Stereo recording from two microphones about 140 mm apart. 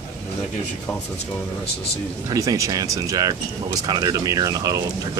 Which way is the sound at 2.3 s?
25° right (ahead or behind).